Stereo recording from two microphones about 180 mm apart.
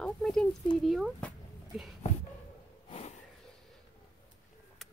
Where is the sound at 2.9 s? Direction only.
35° left (ahead or behind).